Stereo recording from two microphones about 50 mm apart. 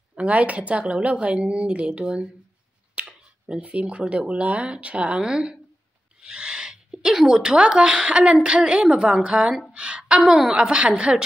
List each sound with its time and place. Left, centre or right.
0.1 s speech: right
3.0 s a sound: right
3.6 s a woman's voice: right
10.2 s a woman's voice: centre
10.5 s speech: centre